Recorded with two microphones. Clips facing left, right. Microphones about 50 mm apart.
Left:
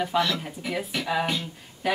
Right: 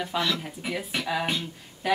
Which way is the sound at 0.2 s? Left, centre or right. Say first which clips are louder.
Left 2 dB; centre.